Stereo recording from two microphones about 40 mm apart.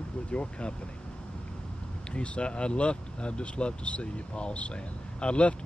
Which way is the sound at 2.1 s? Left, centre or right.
Left.